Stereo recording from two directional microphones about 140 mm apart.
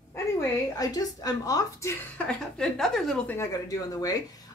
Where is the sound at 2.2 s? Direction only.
5° left (ahead or behind).